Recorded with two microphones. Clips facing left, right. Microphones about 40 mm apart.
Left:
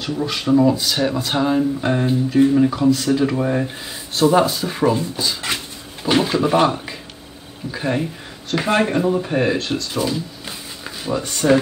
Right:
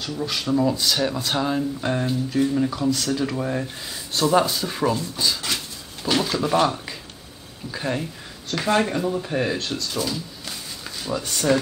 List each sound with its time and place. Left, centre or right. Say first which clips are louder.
0.0 s speech: left 4 dB; centre
7.7 s speech: left 5 dB; centre
10.8 s a sound: left 5 dB; centre